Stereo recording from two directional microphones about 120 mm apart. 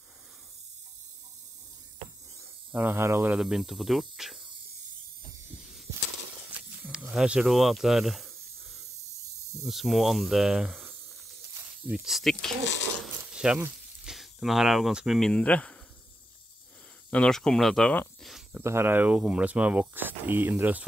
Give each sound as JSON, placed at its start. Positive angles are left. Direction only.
{"t": 2.7, "sound": "speech", "side_deg": -15}
{"t": 3.3, "sound": "speech", "side_deg": -5}
{"t": 6.8, "sound": "snake", "side_deg": -10}
{"t": 9.7, "sound": "speech", "side_deg": 0}
{"t": 11.9, "sound": "speech", "side_deg": -5}
{"t": 13.0, "sound": "mechanisms", "side_deg": -5}
{"t": 14.0, "sound": "speech", "side_deg": 0}
{"t": 17.1, "sound": "speech", "side_deg": 5}
{"t": 18.2, "sound": "cricket", "side_deg": 0}
{"t": 18.6, "sound": "speech", "side_deg": -20}